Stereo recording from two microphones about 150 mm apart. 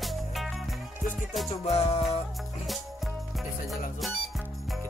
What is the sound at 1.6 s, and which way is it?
Music, 40° left (ahead or behind).